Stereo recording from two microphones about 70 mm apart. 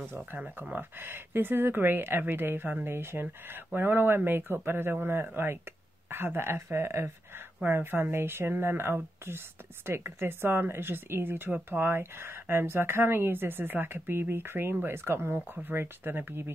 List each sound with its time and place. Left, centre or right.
0.7 s speech: right